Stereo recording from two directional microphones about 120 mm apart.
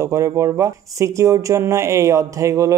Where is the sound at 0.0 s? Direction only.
25° right (ahead or behind).